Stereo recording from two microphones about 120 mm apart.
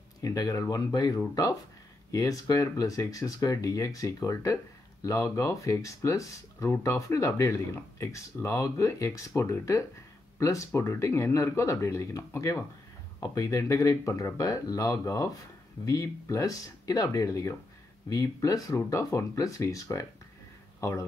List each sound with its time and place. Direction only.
0.2 s speech: 30° left (ahead or behind)